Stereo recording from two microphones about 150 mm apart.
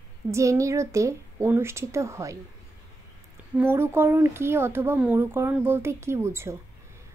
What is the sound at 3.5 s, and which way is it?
Speech, 15° right (ahead or behind).